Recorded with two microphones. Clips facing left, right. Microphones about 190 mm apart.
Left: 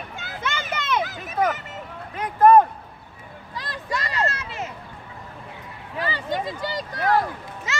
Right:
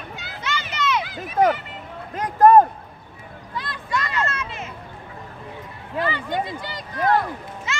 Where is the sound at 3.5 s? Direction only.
40° left (ahead or behind).